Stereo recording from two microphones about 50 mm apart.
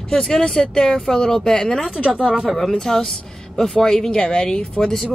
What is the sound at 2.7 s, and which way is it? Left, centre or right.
Speech, centre.